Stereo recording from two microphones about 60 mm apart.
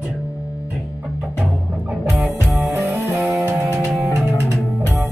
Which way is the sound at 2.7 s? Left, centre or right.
Right.